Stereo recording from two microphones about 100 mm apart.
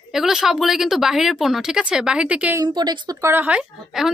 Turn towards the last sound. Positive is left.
turn(degrees=-10)  # may be behind; listen again after turning